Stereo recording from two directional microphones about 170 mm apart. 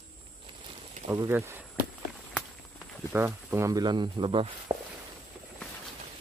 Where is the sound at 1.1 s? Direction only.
15° right (ahead or behind).